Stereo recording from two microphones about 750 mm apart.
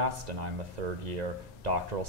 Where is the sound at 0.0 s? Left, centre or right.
Right.